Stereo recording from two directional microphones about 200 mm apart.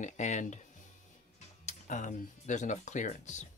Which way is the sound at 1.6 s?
35° left (ahead or behind).